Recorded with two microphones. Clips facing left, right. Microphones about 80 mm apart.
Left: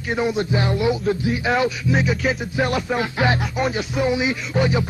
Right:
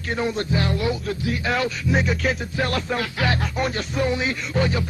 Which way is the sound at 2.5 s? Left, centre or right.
Centre.